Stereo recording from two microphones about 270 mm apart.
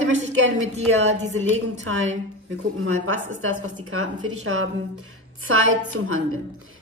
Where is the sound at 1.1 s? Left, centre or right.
Right.